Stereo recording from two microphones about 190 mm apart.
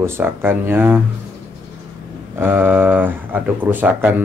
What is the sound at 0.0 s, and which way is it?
Speech, 10° right (ahead or behind).